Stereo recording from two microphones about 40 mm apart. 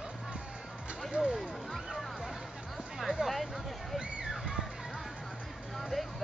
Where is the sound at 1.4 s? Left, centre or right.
Centre.